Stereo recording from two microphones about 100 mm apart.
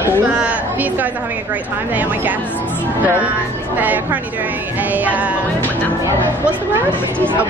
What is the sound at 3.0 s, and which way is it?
Speech, 15° right (ahead or behind).